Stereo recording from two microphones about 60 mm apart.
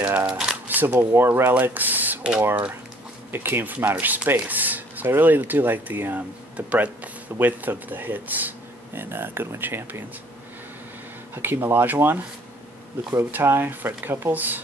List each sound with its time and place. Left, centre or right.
0.0 s shuffling cards: right
0.3 s shuffling cards: centre
0.8 s speech: right
1.5 s speech: right
3.3 s speech: right
11.3 s speech: right